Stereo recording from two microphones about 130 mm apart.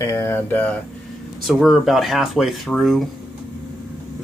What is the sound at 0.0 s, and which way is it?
Speech, 20° left (ahead or behind).